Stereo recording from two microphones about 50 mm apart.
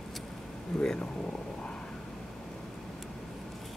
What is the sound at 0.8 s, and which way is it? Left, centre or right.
Speech, centre.